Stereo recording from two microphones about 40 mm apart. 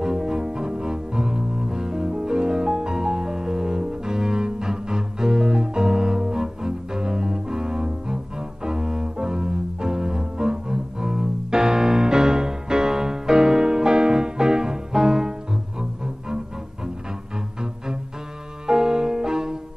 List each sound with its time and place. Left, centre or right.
0.0 s cello: centre
18.7 s music: centre